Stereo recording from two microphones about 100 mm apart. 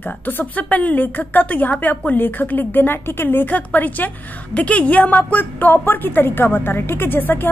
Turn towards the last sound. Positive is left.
turn(degrees=20)  # may be behind; listen again after turning